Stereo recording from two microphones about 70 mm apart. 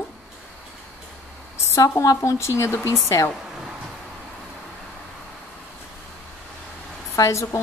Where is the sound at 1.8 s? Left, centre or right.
Left.